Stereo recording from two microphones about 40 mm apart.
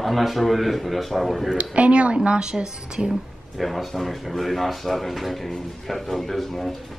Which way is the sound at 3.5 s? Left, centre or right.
Centre.